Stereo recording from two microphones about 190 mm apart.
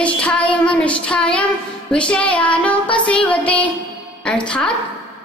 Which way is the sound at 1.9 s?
5° left (ahead or behind).